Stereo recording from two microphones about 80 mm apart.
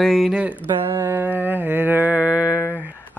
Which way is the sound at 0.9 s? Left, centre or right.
Right.